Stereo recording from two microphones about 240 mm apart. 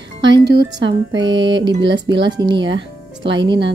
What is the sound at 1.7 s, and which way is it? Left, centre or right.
Speech, right.